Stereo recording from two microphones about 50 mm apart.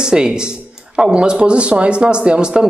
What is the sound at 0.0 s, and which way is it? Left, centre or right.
Speech, centre.